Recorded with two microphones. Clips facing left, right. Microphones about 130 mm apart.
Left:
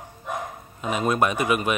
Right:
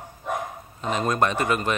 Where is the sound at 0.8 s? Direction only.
10° left (ahead or behind).